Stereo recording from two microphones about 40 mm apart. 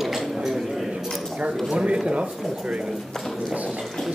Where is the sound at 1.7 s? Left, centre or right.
Right.